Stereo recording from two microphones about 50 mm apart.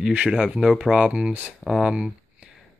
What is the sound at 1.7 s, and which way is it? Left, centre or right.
Speech, centre.